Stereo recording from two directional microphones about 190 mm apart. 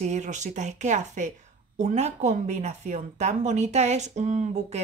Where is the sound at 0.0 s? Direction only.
40° right (ahead or behind).